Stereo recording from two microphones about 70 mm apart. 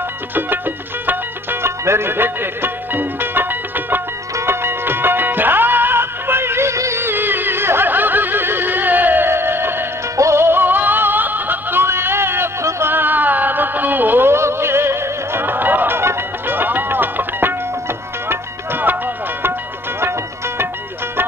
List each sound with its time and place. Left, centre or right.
0.3 s music: right
10.1 s music: right
12.9 s music: right
20.0 s music: right